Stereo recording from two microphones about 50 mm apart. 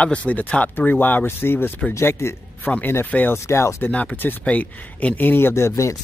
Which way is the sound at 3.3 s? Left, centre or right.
Left.